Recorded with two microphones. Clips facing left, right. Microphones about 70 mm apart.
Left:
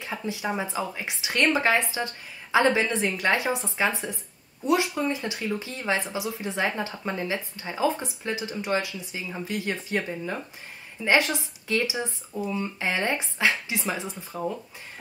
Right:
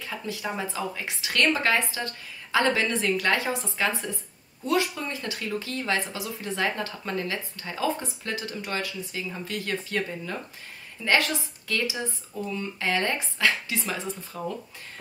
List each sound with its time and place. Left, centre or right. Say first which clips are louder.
0.0 s speech: left 2 dB; left